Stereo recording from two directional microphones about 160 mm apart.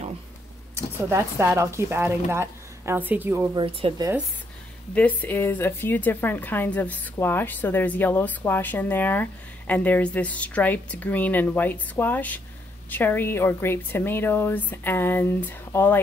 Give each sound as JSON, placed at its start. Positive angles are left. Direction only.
{"t": 0.9, "sound": "a woman's voice", "side_deg": -15}
{"t": 3.5, "sound": "speech", "side_deg": -35}
{"t": 4.9, "sound": "a woman's voice", "side_deg": 10}